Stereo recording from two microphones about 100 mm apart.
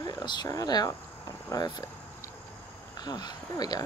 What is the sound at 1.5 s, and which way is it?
Cricket, 35° left (ahead or behind).